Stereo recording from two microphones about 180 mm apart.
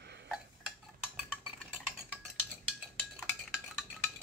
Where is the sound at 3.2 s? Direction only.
5° left (ahead or behind).